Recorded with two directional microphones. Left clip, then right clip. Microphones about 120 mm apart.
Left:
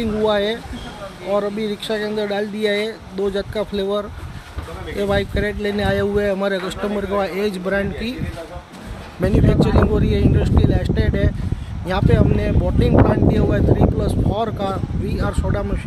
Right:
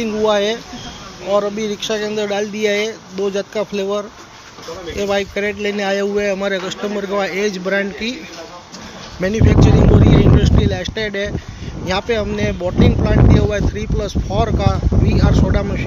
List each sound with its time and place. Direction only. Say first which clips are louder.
0.0 s speech: right 3 dB; 5° left (ahead or behind)
4.9 s speech: right 2 dB; 20° left (ahead or behind)
5.2 s speech: right 3 dB; 5° left (ahead or behind)
9.2 s speech: right 2 dB; 5° left (ahead or behind)